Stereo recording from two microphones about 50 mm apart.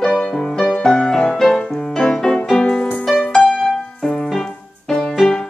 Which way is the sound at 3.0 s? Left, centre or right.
Centre.